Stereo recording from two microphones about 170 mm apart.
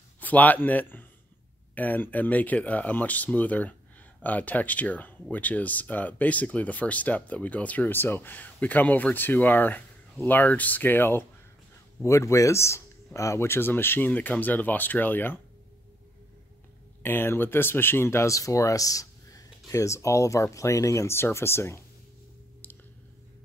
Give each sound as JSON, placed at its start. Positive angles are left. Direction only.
{"t": 0.2, "sound": "a man's voice", "side_deg": 10}
{"t": 17.0, "sound": "speech", "side_deg": 15}